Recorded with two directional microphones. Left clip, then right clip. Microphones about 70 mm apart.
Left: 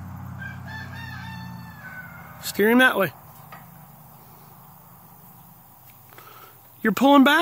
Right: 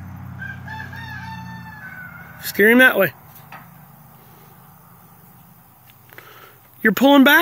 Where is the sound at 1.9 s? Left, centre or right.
Left.